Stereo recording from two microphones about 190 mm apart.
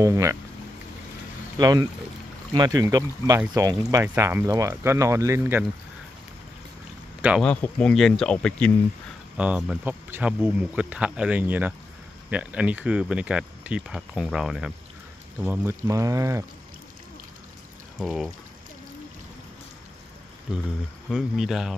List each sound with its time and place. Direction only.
0.0 s speech: 15° right (ahead or behind)
1.6 s speech: 20° right (ahead or behind)
7.2 s speech: 5° right (ahead or behind)
7.4 s speech: 5° left (ahead or behind)
9.4 s speech: 5° right (ahead or behind)
18.0 s speech: centre (ahead or behind)
21.1 s speech: centre (ahead or behind)